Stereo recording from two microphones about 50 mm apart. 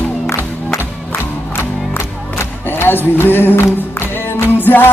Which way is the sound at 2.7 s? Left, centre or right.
Left.